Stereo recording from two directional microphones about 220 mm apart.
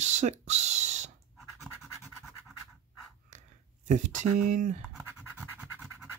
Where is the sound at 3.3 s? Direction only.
35° right (ahead or behind).